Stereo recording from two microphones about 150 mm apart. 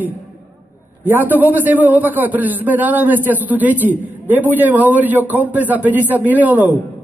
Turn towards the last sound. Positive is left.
turn(degrees=-10)  # may be behind; listen again after turning